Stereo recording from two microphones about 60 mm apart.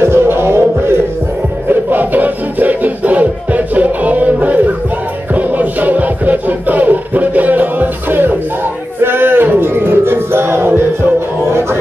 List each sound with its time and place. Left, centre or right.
0.0 s music: right
1.7 s music: right